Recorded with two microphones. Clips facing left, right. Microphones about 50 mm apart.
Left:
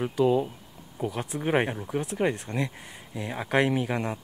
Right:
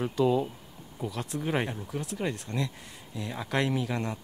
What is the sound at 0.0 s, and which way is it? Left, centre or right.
Speech, centre.